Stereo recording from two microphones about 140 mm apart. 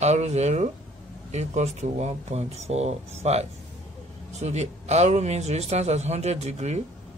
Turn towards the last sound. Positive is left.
turn(degrees=-50)  # may be behind; listen again after turning